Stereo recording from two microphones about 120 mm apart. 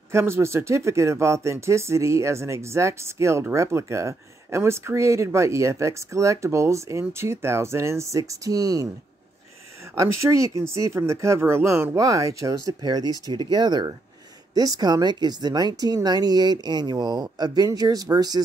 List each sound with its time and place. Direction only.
0.1 s speech: 20° right (ahead or behind)
9.9 s speech: 25° right (ahead or behind)